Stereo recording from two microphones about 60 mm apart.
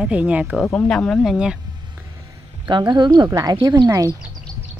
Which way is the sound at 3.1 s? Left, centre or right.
Right.